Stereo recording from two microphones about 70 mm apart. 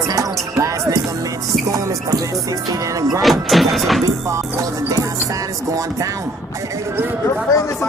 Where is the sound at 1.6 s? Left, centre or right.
Right.